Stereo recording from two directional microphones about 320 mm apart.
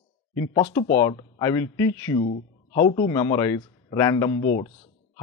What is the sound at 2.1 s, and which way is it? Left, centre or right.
Speech, left.